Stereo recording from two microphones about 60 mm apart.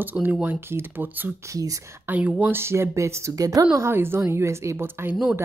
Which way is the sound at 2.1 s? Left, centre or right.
Right.